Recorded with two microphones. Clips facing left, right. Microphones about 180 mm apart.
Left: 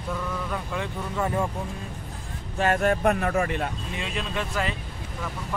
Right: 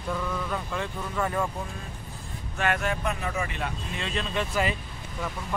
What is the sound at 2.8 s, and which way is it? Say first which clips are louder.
Speech: left 7 dB; 50° left (ahead or behind).